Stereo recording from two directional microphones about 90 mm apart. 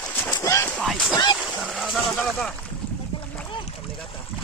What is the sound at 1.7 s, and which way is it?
Speech, centre (ahead or behind).